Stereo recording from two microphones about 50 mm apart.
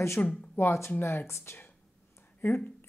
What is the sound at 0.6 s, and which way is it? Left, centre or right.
Speech, left.